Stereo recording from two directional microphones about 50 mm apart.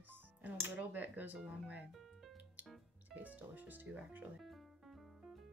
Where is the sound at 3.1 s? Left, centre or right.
Right.